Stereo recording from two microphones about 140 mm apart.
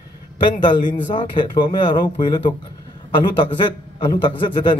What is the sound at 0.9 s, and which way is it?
Speech, 35° left (ahead or behind).